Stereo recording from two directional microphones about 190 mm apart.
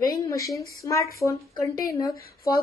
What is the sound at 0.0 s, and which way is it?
A woman's voice, 20° left (ahead or behind).